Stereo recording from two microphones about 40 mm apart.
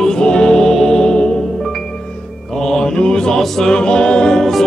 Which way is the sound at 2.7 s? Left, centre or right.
Centre.